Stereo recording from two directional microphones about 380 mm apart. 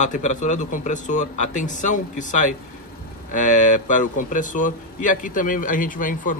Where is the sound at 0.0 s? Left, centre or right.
Centre.